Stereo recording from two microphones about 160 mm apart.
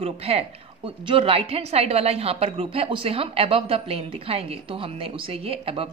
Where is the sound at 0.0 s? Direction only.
40° right (ahead or behind).